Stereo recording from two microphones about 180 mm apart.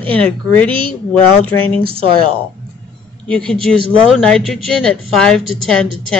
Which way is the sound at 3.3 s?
5° left (ahead or behind).